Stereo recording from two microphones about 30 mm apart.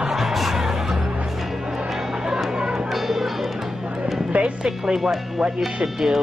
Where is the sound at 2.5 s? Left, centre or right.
Right.